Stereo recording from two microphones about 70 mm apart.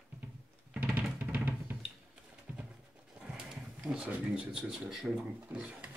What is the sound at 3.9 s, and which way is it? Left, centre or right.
Speech, centre.